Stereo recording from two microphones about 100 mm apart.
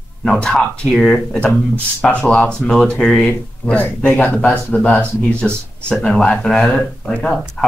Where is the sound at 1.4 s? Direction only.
15° left (ahead or behind).